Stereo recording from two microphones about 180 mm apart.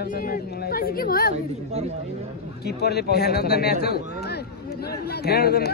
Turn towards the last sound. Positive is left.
turn(degrees=60)  # may be behind; listen again after turning